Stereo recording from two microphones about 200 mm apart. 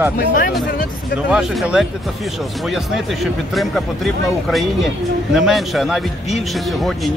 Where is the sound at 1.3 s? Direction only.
5° right (ahead or behind).